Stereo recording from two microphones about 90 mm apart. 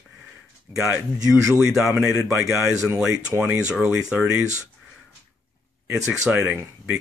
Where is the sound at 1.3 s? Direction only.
5° right (ahead or behind).